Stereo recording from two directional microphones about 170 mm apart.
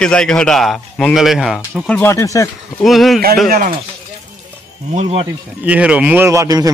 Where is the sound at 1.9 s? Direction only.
15° left (ahead or behind).